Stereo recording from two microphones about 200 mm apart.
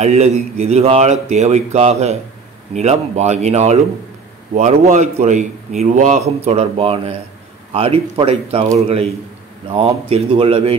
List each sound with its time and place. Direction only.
0.0 s speech: 30° right (ahead or behind)